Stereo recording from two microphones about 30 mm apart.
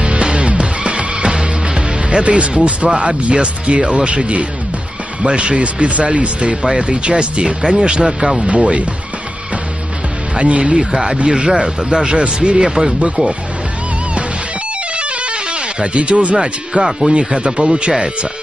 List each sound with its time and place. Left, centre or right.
0.0 s music: right
2.0 s speech: right
10.3 s speech: right
10.6 s speech: right
12.6 s speech: right
13.0 s speech: right
15.0 s music: right
17.0 s speech: right